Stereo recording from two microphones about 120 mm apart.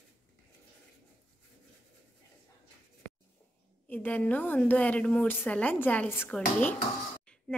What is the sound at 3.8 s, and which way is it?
A woman's voice, 15° left (ahead or behind).